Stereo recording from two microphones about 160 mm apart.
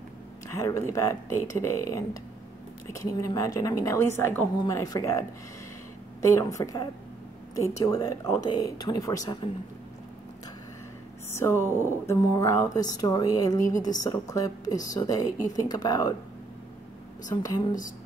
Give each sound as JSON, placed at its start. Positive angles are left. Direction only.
{"t": 0.6, "sound": "speech", "side_deg": 20}
{"t": 6.2, "sound": "speech", "side_deg": 20}
{"t": 11.3, "sound": "speech", "side_deg": 15}
{"t": 17.4, "sound": "speech", "side_deg": 20}